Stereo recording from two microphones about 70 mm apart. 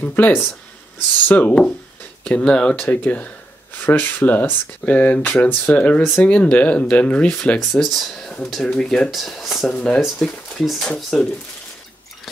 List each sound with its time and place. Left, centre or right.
0.0 s speech: left
7.7 s speech: centre